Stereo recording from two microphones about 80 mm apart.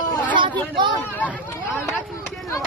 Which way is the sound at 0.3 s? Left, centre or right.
Right.